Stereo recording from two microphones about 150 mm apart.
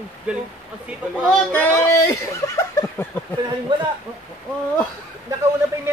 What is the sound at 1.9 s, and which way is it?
Snicker, 20° left (ahead or behind).